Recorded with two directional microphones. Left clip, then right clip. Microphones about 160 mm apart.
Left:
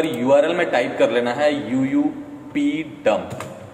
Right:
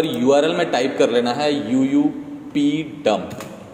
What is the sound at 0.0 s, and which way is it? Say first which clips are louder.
A man's voice: even; 25° right (ahead or behind).